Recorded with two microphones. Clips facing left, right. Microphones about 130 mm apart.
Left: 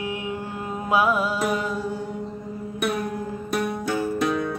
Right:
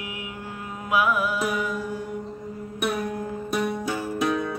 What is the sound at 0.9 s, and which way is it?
Music, 30° left (ahead or behind).